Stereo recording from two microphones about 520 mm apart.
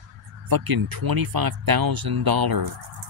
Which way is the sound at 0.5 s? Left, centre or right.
Right.